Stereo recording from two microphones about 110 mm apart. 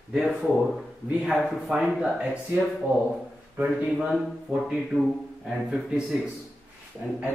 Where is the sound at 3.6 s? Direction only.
5° right (ahead or behind).